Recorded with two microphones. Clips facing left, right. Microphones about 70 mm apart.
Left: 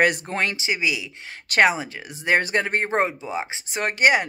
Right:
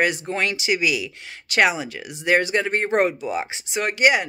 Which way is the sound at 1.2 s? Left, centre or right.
Left.